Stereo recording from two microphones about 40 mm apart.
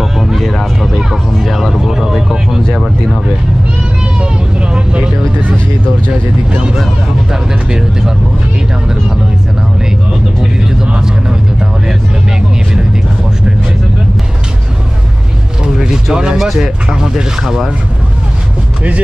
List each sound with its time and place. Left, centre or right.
0.0 s vehicle: centre
4.2 s vehicle: right
10.4 s vehicle: centre
12.4 s vehicle: centre
15.6 s a sound: centre
16.5 s speech: centre